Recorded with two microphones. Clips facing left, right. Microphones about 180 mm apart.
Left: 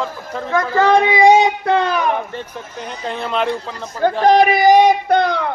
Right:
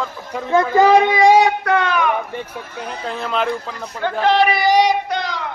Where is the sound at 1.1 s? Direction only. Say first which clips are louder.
Left 1 dB; 20° left (ahead or behind); by 2.1 s 35° left (ahead or behind).